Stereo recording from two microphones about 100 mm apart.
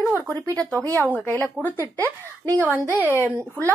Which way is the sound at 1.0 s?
20° left (ahead or behind).